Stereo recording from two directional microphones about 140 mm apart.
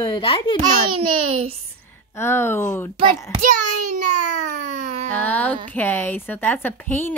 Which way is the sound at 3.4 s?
65° right (ahead or behind).